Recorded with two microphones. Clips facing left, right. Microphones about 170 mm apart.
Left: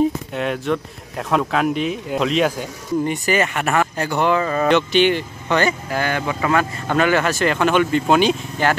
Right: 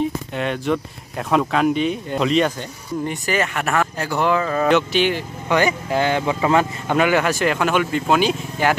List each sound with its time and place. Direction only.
0.3 s speech: centre (ahead or behind)